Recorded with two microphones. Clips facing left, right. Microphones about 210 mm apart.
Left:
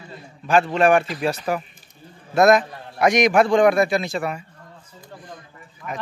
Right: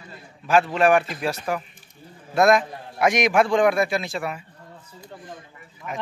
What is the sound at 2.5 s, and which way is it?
A man's voice, centre (ahead or behind).